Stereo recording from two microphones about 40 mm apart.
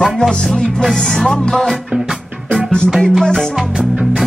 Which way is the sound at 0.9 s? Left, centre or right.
Centre.